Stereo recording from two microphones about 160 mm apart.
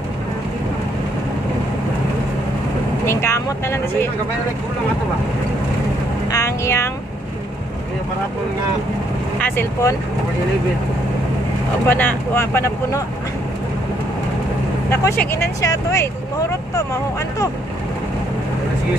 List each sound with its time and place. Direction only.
3.1 s speech: 15° left (ahead or behind)
6.3 s a sound: 20° left (ahead or behind)
9.4 s speech: 15° left (ahead or behind)
11.9 s speech: 15° left (ahead or behind)
14.9 s speech: 15° left (ahead or behind)